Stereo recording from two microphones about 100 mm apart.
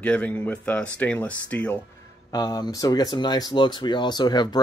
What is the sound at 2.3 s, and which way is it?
Speech, 40° left (ahead or behind).